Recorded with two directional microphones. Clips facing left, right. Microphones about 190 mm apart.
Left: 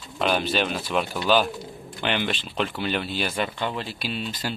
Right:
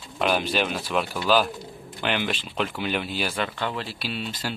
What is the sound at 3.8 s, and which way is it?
Speech, 5° right (ahead or behind).